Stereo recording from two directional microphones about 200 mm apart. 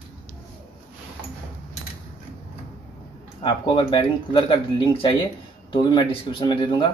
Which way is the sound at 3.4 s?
25° left (ahead or behind).